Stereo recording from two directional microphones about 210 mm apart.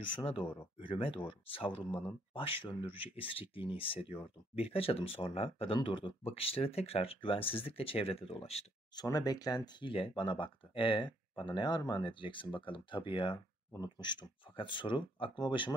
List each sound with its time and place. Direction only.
0.1 s speech: 25° left (ahead or behind)